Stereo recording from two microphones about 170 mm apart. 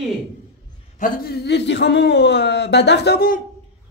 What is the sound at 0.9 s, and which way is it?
A man's voice, 55° left (ahead or behind).